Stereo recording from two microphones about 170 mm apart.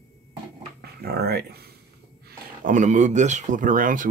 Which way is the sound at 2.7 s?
45° right (ahead or behind).